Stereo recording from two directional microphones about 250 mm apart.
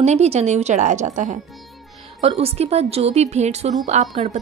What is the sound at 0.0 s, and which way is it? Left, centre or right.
A woman's voice, right.